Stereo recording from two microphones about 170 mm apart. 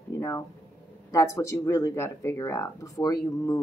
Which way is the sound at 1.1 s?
15° left (ahead or behind).